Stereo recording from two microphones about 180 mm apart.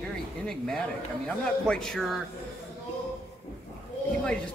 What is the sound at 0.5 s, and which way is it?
Speech, 5° left (ahead or behind).